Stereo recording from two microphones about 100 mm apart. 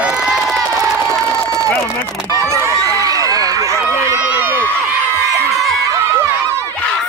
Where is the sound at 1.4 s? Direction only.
35° right (ahead or behind).